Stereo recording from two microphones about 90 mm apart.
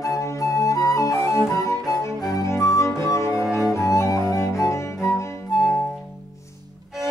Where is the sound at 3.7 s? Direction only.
35° left (ahead or behind).